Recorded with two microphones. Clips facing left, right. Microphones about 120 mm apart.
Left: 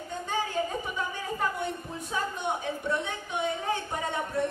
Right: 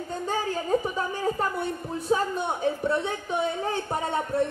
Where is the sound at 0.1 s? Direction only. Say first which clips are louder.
Right 2 dB; 40° right (ahead or behind).